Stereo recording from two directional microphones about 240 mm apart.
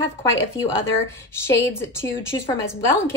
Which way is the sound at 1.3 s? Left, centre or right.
Centre.